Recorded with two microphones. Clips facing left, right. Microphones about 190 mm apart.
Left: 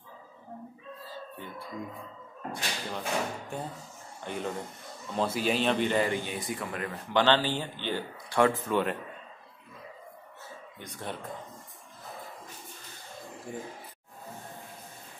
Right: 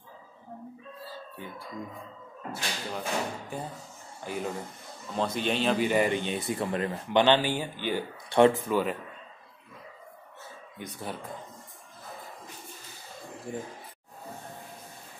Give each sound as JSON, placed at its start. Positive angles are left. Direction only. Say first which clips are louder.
{"t": 2.5, "sound": "a man's voice", "louder": "right 1 dB", "side_deg": -5}
{"t": 8.3, "sound": "speech", "louder": "right 4 dB", "side_deg": -25}
{"t": 8.6, "sound": "speech", "louder": "right 1 dB", "side_deg": -5}
{"t": 10.8, "sound": "speech", "louder": "right 2 dB", "side_deg": -5}